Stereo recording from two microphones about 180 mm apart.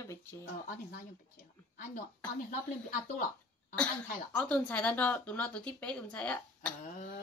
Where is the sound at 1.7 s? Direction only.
50° left (ahead or behind).